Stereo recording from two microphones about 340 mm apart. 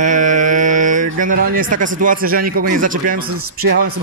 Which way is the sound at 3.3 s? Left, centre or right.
Right.